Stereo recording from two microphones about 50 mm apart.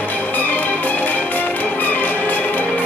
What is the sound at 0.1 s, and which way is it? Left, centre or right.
Music, left.